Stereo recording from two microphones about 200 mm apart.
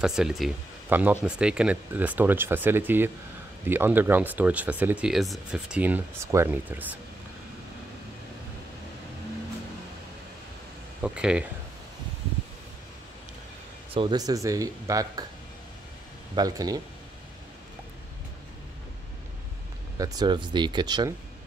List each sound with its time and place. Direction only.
0.0 s speech: centre (ahead or behind)
11.0 s speech: 5° right (ahead or behind)
13.9 s speech: 20° right (ahead or behind)
16.3 s speech: 20° right (ahead or behind)
20.0 s speech: 20° right (ahead or behind)